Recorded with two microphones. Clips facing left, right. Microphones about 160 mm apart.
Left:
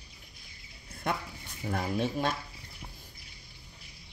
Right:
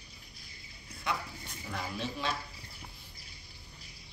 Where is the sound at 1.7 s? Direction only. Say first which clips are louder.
Left 7 dB; 50° left (ahead or behind).